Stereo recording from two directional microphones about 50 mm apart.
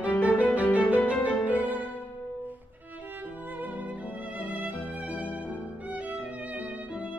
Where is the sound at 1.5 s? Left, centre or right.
Right.